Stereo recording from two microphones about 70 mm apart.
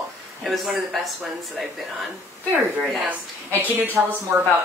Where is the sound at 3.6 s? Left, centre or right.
Right.